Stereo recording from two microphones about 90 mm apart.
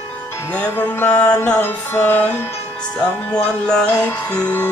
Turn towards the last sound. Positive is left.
turn(degrees=15)  # may be behind; listen again after turning